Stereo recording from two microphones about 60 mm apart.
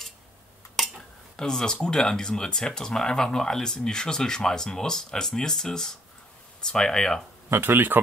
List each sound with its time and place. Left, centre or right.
0.8 s dishes: centre
1.3 s speech: centre
7.4 s speech: right